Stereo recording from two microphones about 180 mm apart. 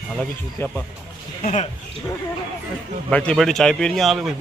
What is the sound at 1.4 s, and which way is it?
Speech, 45° left (ahead or behind).